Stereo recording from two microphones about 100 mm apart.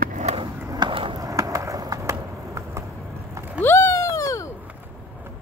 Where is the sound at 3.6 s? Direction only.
25° left (ahead or behind).